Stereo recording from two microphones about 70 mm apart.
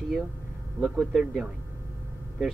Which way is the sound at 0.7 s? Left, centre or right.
Centre.